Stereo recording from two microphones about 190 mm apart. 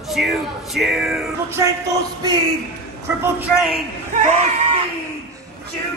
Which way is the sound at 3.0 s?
10° right (ahead or behind).